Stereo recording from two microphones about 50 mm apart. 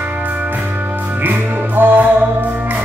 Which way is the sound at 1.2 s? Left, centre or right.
Right.